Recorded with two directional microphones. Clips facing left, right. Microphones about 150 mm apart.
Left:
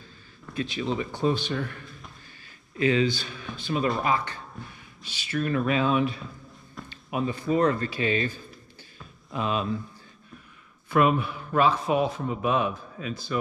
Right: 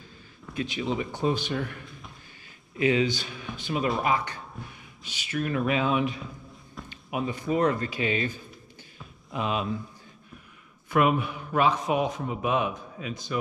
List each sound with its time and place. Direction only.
0.6 s a man's voice: 15° right (ahead or behind)
2.8 s a man's voice: 15° right (ahead or behind)
10.9 s a man's voice: 15° right (ahead or behind)